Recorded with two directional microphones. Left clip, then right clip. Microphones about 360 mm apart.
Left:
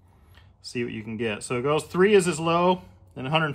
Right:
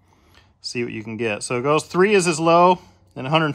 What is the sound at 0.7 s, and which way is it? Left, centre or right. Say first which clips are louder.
Speech: right 5 dB; centre.